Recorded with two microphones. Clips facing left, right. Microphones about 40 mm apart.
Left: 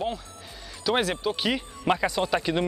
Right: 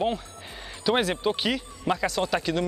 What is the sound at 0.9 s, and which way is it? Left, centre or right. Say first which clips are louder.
Speech: even; centre.